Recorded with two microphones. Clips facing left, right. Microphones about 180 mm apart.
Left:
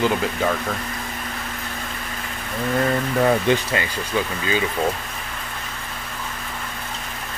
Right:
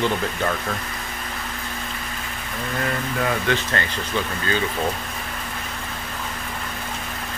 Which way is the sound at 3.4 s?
15° left (ahead or behind).